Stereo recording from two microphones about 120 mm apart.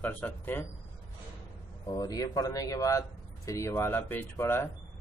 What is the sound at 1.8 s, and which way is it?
Speech, 30° left (ahead or behind).